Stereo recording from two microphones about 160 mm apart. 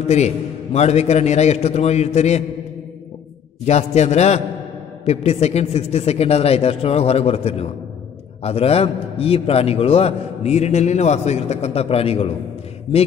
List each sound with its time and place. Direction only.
0.7 s a man's voice: 45° left (ahead or behind)
3.6 s a man's voice: 45° left (ahead or behind)